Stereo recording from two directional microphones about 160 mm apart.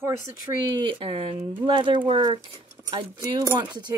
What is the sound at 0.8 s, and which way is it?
Speech, 30° right (ahead or behind).